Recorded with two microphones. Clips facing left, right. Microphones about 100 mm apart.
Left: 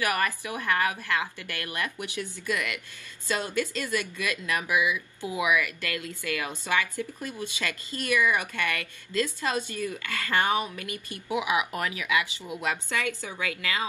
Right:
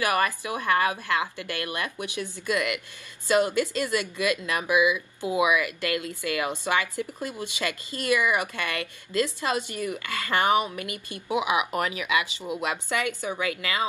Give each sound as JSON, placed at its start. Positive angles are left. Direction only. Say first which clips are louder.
{"t": 0.0, "sound": "speech", "louder": "right 3 dB", "side_deg": -25}